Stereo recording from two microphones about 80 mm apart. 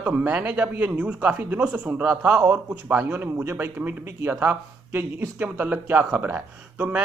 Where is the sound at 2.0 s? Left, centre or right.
Right.